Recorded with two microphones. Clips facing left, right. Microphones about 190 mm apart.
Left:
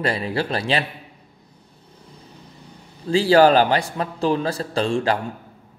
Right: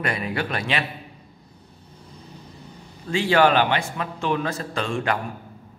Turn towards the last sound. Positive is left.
turn(degrees=30)  # may be behind; listen again after turning